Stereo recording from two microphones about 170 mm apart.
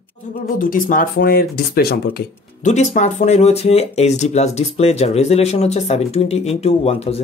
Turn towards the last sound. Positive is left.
turn(degrees=35)  # may be behind; listen again after turning